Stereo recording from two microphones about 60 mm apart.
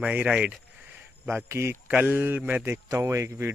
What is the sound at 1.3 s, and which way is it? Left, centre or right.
Speech, right.